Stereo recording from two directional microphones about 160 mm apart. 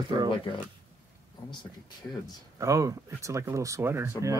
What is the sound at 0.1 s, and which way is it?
Speech, 30° right (ahead or behind).